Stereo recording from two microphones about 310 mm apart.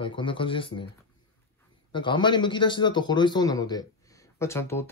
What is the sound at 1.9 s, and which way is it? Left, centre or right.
A man's voice, centre.